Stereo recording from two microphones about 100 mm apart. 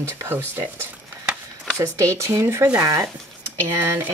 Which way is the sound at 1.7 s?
30° right (ahead or behind).